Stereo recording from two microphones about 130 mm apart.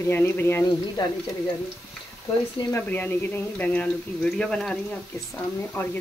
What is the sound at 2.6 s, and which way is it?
Speech, 15° left (ahead or behind).